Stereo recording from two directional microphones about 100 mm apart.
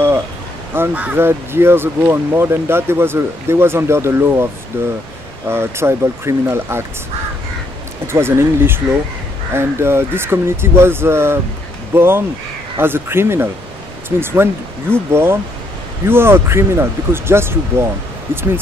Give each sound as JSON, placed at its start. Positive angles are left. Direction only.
{"t": 0.7, "sound": "speech", "side_deg": -20}
{"t": 8.1, "sound": "speech", "side_deg": -25}